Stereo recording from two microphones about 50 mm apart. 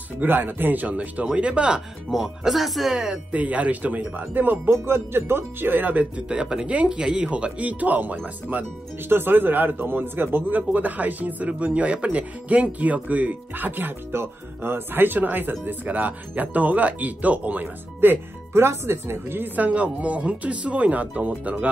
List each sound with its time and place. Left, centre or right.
0.2 s speech: right
0.8 s speech: right
2.0 s speech: centre
3.3 s a man's voice: right
6.2 s speech: centre; by 8.2 s right
9.1 s a man's voice: right
18.5 s a man's voice: right